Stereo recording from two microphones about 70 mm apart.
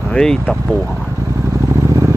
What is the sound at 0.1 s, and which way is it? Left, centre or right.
Speech, centre.